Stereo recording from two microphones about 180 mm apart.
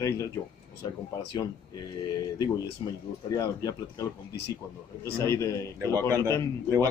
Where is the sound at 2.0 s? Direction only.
20° left (ahead or behind).